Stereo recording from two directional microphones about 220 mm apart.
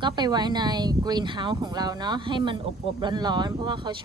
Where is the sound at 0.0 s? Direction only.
20° right (ahead or behind).